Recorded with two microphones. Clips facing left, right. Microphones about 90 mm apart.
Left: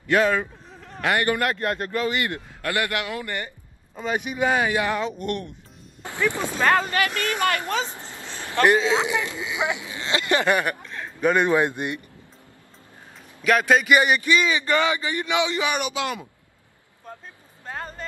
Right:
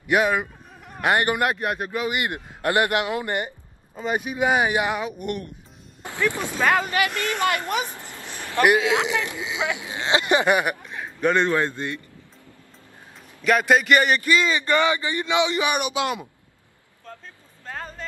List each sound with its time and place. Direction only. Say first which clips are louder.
0.0 s a man's voice: even; 15° right (ahead or behind)
6.1 s speech: even; 20° left (ahead or behind)
6.6 s speech: even; 10° right (ahead or behind)
7.9 s vehicle: even; 20° left (ahead or behind)
8.5 s speech: even; 15° right (ahead or behind)
8.9 s speech: even; 20° left (ahead or behind)
9.3 s a man's voice: left 1 dB; 20° right (ahead or behind)
11.1 s speech: left 1 dB; 5° left (ahead or behind)
13.4 s a man's voice: even; centre (ahead or behind)
13.9 s speech: even; 10° left (ahead or behind)
15.2 s speech: right 2 dB; 20° right (ahead or behind)
17.1 s vehicle: left 1 dB; 15° left (ahead or behind)
17.6 s a sound: left 1 dB; 5° left (ahead or behind)